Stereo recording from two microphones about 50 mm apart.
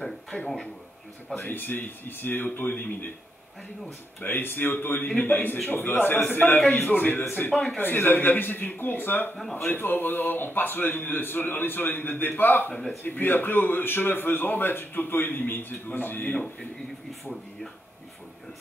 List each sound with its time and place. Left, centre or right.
1.3 s speech: left
4.2 s a man's voice: left